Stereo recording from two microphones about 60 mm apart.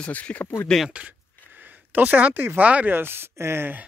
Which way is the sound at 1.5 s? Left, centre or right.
Right.